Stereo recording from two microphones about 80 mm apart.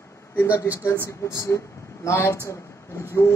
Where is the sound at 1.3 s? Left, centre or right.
Left.